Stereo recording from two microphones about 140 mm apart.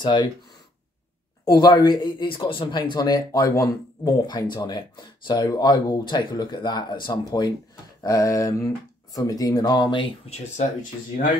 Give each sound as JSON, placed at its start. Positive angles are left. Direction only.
{"t": 0.0, "sound": "speech", "side_deg": 30}
{"t": 1.4, "sound": "speech", "side_deg": 25}